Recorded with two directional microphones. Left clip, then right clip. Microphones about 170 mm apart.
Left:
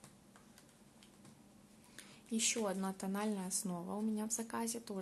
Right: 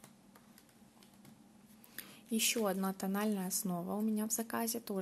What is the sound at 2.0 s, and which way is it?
A woman's voice, 30° right (ahead or behind).